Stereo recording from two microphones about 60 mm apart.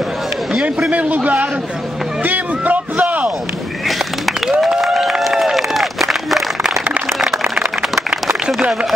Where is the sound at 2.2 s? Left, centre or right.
Right.